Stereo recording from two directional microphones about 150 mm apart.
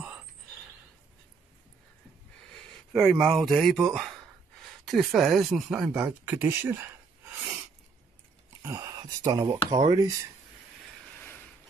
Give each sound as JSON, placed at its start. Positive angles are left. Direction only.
{"t": 2.5, "sound": "speech", "side_deg": 5}
{"t": 7.3, "sound": "sneeze", "side_deg": -10}
{"t": 8.6, "sound": "speech", "side_deg": -20}
{"t": 11.1, "sound": "mechanisms", "side_deg": 10}